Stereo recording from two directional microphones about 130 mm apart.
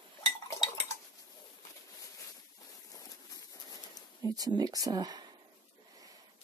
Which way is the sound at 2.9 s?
25° left (ahead or behind).